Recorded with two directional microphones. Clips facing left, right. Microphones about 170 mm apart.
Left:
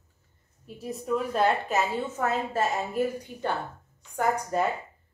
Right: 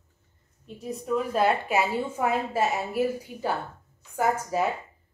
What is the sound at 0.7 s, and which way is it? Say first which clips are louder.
A woman's voice: even; centre (ahead or behind).